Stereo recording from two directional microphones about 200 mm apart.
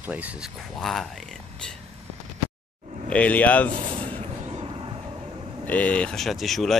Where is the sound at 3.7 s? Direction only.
25° right (ahead or behind).